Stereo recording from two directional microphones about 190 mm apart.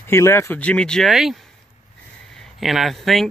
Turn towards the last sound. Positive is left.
turn(degrees=0)  # may be behind; listen again after turning